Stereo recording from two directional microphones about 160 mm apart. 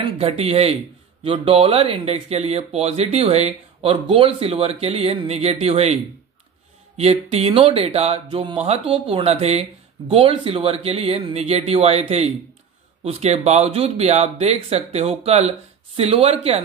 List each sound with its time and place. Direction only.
0.0 s speech: 40° right (ahead or behind)
7.0 s speech: 40° right (ahead or behind)